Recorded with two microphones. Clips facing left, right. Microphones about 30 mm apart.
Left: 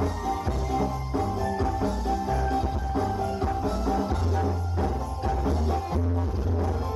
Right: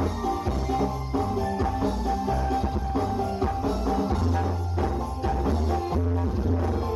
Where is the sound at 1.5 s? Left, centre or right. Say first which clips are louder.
Even; centre.